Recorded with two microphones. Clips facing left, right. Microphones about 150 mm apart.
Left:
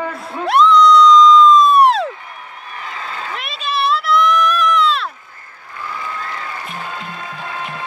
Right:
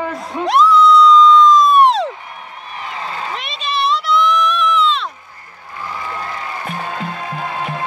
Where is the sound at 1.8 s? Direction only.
Centre (ahead or behind).